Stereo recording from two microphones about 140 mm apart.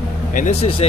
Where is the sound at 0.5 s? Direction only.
45° left (ahead or behind).